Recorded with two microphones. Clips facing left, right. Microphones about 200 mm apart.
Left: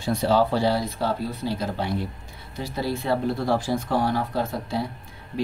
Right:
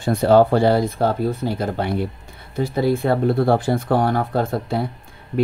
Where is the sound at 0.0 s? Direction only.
55° right (ahead or behind).